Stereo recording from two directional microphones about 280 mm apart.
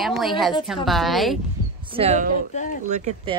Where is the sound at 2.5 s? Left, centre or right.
Left.